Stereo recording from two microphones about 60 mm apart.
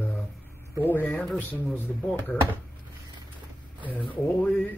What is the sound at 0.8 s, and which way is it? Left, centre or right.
Speech, left.